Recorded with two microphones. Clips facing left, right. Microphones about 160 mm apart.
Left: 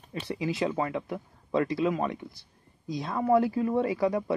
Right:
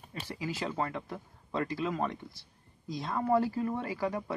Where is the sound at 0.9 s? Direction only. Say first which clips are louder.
Left 6 dB; 20° left (ahead or behind).